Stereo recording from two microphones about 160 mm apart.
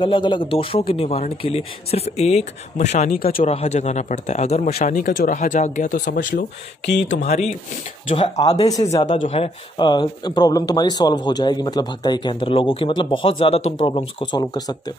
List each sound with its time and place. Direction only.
0.0 s speech: 30° left (ahead or behind); by 3.2 s 45° left (ahead or behind)
3.2 s speech: 65° left (ahead or behind)
3.4 s speech: 45° left (ahead or behind)
8.1 s speech: 35° left (ahead or behind)